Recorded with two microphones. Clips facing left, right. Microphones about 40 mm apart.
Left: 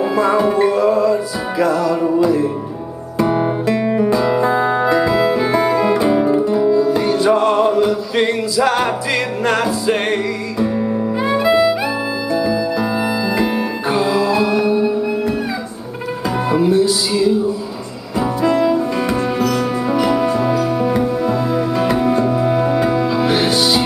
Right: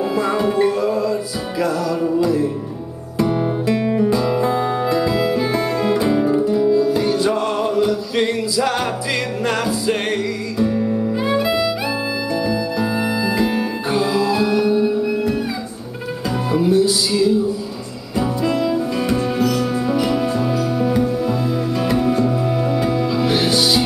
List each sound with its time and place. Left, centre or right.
0.0 s music: centre
3.3 s music: left
3.6 s music: centre
16.4 s music: centre